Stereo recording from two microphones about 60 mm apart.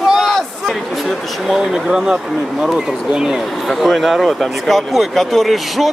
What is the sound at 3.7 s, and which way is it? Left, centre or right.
Speech, centre.